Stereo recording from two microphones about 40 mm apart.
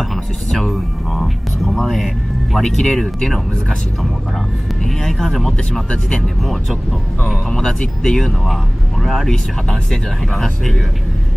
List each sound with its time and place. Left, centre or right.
0.0 s music: centre
2.6 s speech: centre
4.8 s speech: centre
5.9 s speech: left
6.4 s speech: centre
7.5 s speech: centre
9.0 s speech: centre
9.3 s speech: centre